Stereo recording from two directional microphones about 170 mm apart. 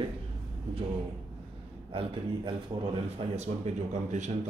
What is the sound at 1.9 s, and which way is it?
A man's voice, 30° right (ahead or behind).